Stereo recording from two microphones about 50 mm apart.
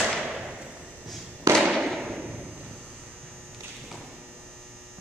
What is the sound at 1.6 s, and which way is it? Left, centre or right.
Fireworks, centre.